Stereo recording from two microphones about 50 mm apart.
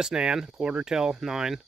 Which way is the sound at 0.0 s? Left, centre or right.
Centre.